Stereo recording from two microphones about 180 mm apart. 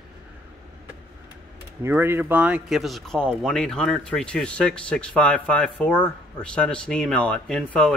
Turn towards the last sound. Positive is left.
turn(degrees=5)  # may be behind; listen again after turning